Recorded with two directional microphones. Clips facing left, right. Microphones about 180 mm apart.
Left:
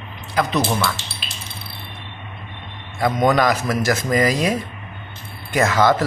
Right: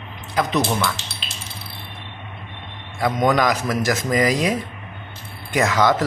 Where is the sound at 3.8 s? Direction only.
15° right (ahead or behind).